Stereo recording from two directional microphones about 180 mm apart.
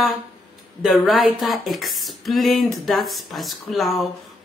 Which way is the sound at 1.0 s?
Centre (ahead or behind).